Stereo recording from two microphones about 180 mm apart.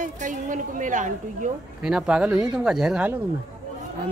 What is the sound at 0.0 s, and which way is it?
A woman's voice, 45° right (ahead or behind).